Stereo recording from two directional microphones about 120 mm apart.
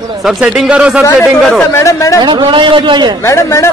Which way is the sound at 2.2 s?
40° right (ahead or behind).